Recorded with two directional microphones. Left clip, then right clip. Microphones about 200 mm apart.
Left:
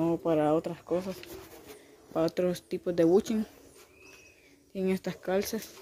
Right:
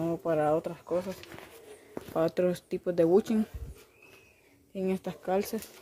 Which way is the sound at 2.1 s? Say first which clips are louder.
Right 1 dB; 10° right (ahead or behind).